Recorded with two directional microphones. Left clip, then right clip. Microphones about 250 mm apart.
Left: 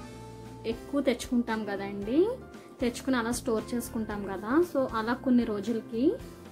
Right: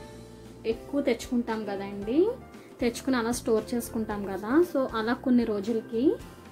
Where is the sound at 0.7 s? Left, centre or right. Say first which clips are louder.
Right 2 dB; centre.